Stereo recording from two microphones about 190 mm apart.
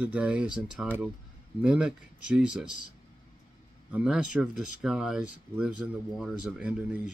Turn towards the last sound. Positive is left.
turn(degrees=-5)  # may be behind; listen again after turning